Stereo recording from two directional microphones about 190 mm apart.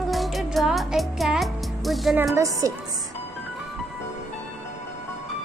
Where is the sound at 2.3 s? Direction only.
15° right (ahead or behind).